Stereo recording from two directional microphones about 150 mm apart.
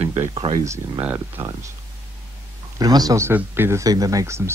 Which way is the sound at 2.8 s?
25° right (ahead or behind).